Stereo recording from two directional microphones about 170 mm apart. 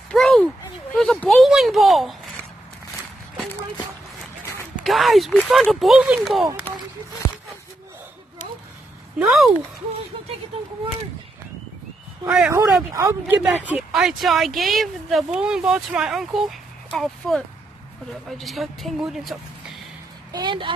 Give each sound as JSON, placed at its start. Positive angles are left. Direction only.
{"t": 0.1, "sound": "a sound", "side_deg": 5}
{"t": 4.8, "sound": "speech", "side_deg": 0}
{"t": 9.2, "sound": "speech", "side_deg": 0}
{"t": 12.3, "sound": "speech", "side_deg": -10}
{"t": 18.4, "sound": "speech", "side_deg": 0}
{"t": 20.3, "sound": "speech", "side_deg": -30}